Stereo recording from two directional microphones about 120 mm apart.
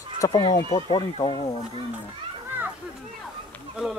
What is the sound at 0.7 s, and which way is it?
Speech, 45° left (ahead or behind).